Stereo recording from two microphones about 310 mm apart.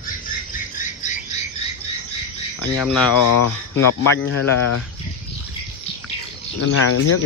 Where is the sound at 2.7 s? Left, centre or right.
Centre.